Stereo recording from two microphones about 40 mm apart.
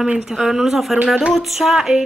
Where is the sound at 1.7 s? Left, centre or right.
Centre.